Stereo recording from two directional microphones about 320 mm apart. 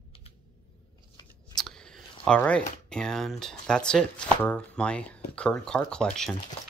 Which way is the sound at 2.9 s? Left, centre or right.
Centre.